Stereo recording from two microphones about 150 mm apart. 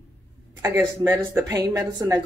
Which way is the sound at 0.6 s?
15° right (ahead or behind).